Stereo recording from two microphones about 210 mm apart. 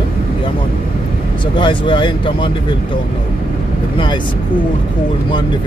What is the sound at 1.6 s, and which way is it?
Speech, 25° left (ahead or behind).